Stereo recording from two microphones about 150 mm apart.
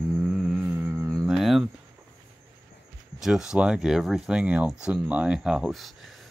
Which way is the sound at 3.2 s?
5° right (ahead or behind).